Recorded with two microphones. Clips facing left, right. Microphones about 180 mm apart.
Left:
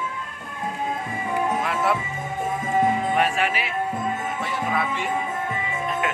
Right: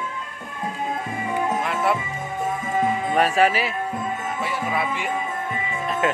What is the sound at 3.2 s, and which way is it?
Speech, 40° right (ahead or behind).